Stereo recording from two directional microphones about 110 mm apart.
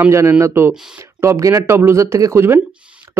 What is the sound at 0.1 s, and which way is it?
Speech, 25° right (ahead or behind).